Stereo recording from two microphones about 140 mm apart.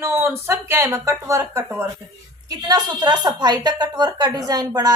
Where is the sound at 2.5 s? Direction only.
30° right (ahead or behind).